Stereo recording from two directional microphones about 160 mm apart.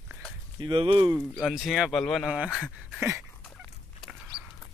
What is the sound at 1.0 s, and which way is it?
Speech, 20° right (ahead or behind).